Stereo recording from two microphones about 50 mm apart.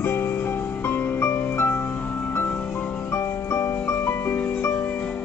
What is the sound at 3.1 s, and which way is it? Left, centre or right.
Music, left.